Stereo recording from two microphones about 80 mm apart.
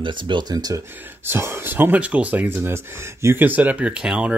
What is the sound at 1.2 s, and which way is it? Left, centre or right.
Speech, right.